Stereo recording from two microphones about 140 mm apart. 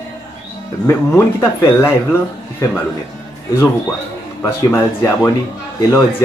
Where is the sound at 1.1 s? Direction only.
15° left (ahead or behind).